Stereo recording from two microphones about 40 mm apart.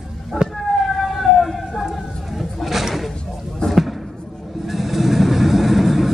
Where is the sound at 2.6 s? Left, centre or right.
Centre.